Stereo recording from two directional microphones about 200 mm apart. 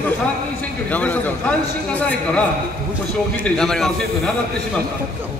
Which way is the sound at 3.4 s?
Centre (ahead or behind).